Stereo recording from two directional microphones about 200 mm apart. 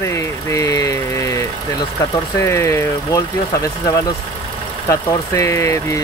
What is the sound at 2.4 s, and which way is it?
Speech, 15° left (ahead or behind).